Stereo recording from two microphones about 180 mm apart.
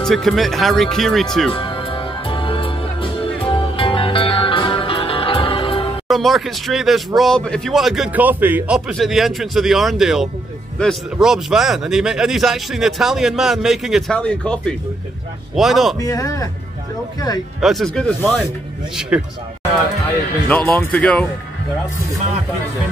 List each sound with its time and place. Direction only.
0.0 s speech: centre (ahead or behind)
1.5 s music: 30° left (ahead or behind)
6.0 s speech: centre (ahead or behind)
16.0 s a man's voice: 20° left (ahead or behind)
17.6 s speech: centre (ahead or behind)
18.9 s speech: 5° right (ahead or behind)
20.4 s speech: 10° left (ahead or behind)